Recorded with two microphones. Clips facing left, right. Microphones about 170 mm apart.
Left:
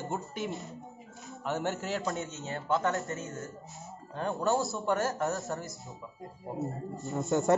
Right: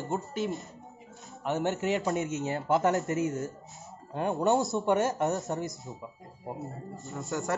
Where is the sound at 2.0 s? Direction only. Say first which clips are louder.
Right 6 dB; 20° right (ahead or behind).